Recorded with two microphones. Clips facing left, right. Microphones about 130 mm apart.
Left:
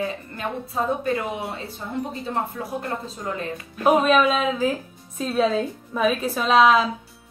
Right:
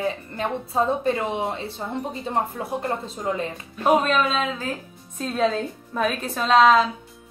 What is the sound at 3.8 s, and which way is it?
A woman's voice, 5° left (ahead or behind).